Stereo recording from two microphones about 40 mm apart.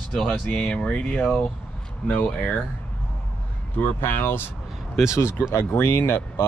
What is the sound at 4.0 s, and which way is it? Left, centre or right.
Speech, left.